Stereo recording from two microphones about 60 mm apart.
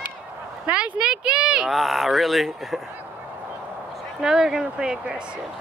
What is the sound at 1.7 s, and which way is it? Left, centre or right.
Speech, centre.